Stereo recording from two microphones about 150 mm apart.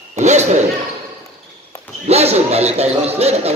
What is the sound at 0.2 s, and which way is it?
Basketball bounce, 50° right (ahead or behind).